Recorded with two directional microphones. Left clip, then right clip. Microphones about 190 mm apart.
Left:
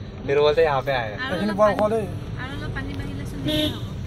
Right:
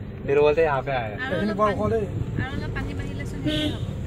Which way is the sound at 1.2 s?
20° left (ahead or behind).